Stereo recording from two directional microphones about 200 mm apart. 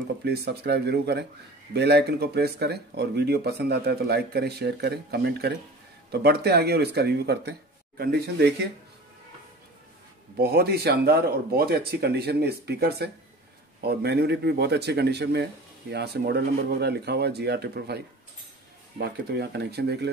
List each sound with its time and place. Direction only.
0.2 s speech: 55° right (ahead or behind)
10.4 s speech: 50° right (ahead or behind)